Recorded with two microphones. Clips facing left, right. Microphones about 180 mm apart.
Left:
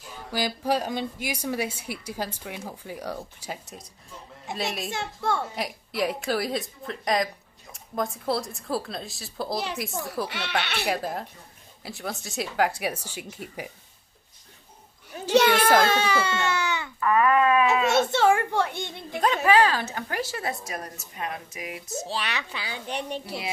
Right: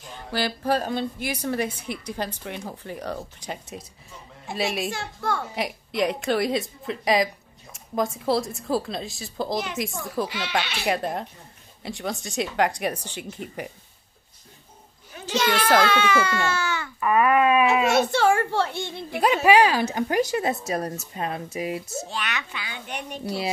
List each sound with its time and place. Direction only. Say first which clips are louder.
0.1 s a woman's voice: right 2 dB; 10° left (ahead or behind)
4.9 s a child's voice: left 1 dB; 25° left (ahead or behind)
5.6 s speech: right 3 dB; centre (ahead or behind)
10.6 s a child's voice: even; 60° left (ahead or behind)
10.9 s speech: right 6 dB; centre (ahead or behind)
15.3 s a child's voice: left 4 dB; 55° left (ahead or behind)
15.8 s speech: right 2 dB; 40° left (ahead or behind); by 16.9 s 20° left (ahead or behind)
17.0 s speech: right 1 dB; 15° right (ahead or behind)
18.1 s a woman's voice: right 1 dB; 20° left (ahead or behind)
19.1 s speech: right 3 dB; 10° right (ahead or behind); by 21.9 s 30° right (ahead or behind)
22.0 s a child's voice: left 1 dB; 30° left (ahead or behind)